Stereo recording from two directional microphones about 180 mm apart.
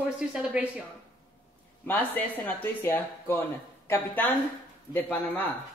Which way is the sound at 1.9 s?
10° left (ahead or behind).